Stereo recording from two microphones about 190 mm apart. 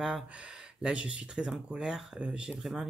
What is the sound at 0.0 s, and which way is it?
Speech, 5° right (ahead or behind).